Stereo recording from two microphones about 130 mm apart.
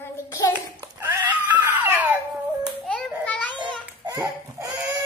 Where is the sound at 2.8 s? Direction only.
10° left (ahead or behind).